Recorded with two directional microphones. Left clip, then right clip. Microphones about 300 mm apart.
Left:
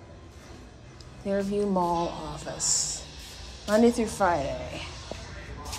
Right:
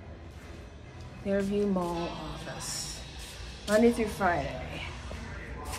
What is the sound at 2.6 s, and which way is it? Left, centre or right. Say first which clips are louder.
Speech: left 12 dB; left.